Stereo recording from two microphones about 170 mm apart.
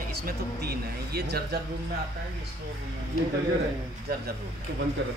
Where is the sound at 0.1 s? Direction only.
65° right (ahead or behind).